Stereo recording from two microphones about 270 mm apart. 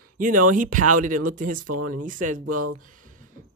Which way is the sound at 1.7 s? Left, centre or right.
Right.